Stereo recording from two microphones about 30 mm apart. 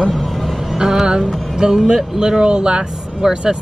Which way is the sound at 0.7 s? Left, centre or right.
Right.